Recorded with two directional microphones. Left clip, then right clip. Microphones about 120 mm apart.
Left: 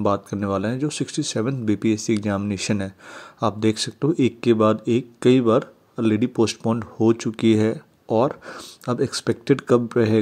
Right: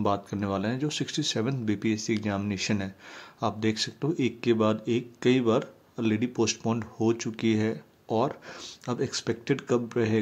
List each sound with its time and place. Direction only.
0.0 s speech: 35° left (ahead or behind)